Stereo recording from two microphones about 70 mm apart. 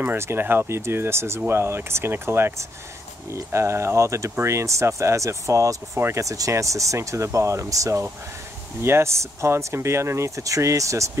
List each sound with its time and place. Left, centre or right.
0.0 s speech: right